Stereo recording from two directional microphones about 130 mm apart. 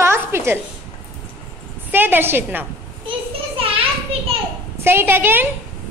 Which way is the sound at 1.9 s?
15° right (ahead or behind).